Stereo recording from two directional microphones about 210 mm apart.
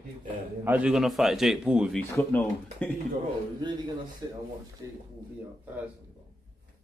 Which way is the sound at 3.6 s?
20° right (ahead or behind).